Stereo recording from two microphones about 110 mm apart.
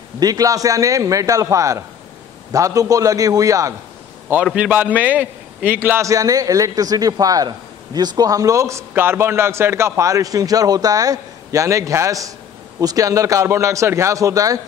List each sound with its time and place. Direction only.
0.2 s a man's voice: 35° right (ahead or behind)
4.6 s a man's voice: 15° right (ahead or behind); by 14.6 s 30° right (ahead or behind)